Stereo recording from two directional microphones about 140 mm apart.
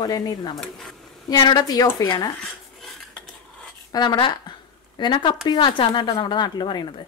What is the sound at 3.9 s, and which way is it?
A woman's voice, 30° left (ahead or behind).